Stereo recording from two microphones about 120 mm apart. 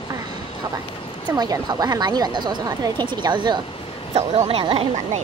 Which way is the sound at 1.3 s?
30° right (ahead or behind).